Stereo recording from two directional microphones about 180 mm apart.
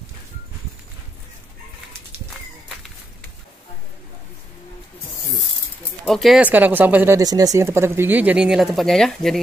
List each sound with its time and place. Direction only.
6.0 s speech: centre (ahead or behind)